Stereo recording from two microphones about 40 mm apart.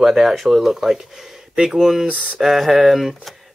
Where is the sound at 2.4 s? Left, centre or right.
Centre.